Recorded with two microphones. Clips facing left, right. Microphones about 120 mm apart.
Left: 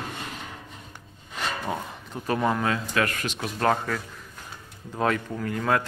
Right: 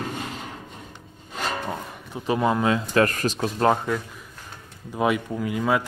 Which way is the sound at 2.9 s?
35° right (ahead or behind).